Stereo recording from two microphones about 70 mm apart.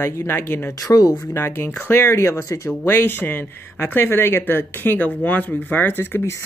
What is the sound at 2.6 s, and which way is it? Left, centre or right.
Speech, left.